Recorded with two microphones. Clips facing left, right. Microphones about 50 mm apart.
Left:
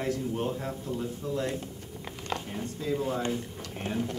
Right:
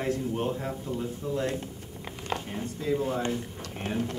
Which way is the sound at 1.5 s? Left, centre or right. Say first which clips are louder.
Right 1 dB; centre.